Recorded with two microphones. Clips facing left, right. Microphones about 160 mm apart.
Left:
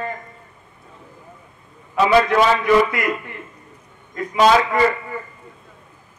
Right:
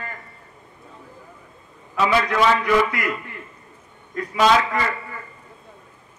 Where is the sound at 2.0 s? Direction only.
25° left (ahead or behind).